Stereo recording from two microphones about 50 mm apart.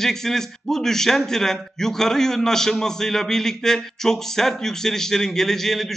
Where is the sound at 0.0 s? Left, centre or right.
Centre.